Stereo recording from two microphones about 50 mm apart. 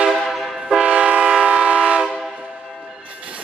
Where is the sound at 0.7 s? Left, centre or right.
Centre.